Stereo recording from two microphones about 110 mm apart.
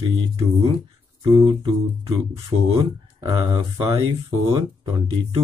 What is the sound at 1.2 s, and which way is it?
Speech, 45° right (ahead or behind).